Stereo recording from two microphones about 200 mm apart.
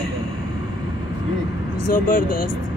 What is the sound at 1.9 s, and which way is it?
Speech, 45° left (ahead or behind).